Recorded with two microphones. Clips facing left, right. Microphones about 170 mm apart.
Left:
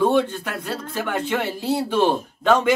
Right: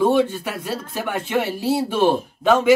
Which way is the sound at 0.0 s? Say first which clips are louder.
Right 1 dB; 10° right (ahead or behind).